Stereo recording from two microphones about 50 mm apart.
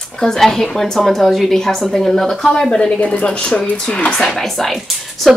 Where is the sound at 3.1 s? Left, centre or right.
Left.